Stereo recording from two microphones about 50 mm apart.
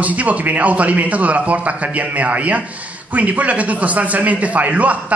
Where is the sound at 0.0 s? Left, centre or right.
Right.